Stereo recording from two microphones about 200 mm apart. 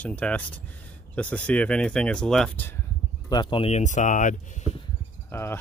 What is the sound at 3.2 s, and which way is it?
Speech, 20° left (ahead or behind).